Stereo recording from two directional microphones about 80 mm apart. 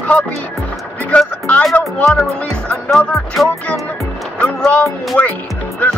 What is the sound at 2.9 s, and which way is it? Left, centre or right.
Speech, centre.